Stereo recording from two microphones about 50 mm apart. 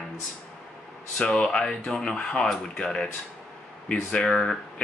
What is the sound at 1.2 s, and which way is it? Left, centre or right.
Speech, centre.